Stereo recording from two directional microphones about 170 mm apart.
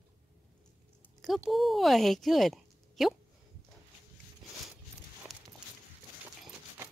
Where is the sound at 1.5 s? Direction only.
Centre (ahead or behind).